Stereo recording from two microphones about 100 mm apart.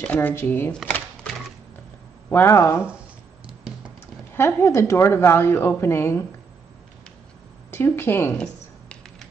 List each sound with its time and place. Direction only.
0.0 s a woman's voice: 20° left (ahead or behind)
2.2 s a woman's voice: 25° left (ahead or behind)
4.4 s a woman's voice: 25° left (ahead or behind)
7.7 s a woman's voice: 25° left (ahead or behind)
8.4 s a sound: 10° left (ahead or behind)